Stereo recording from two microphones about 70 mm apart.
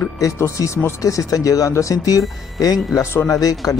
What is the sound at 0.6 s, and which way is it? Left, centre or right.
Speech, left.